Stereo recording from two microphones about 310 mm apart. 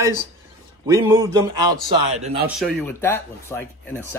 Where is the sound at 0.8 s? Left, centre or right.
Centre.